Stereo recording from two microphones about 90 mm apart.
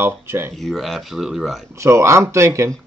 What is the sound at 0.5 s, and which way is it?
Speech, centre (ahead or behind).